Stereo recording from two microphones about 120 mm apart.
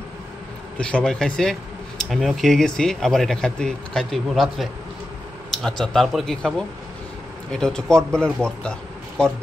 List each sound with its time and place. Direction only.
0.7 s speech: 5° left (ahead or behind)
7.5 s speech: 5° left (ahead or behind)